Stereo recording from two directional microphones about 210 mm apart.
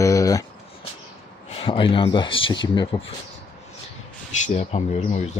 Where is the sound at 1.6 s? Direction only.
25° left (ahead or behind).